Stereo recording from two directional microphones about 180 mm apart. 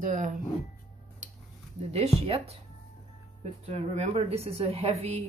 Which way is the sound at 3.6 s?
35° right (ahead or behind).